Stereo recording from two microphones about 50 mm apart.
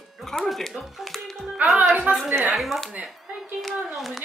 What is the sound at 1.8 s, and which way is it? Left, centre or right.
Speech, right.